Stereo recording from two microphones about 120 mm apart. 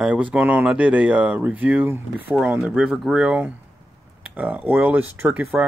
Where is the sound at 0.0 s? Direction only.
10° right (ahead or behind).